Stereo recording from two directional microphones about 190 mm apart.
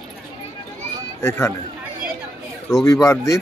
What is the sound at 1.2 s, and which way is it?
Speech, 15° left (ahead or behind).